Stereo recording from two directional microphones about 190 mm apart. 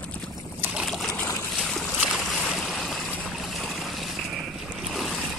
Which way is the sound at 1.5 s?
Centre (ahead or behind).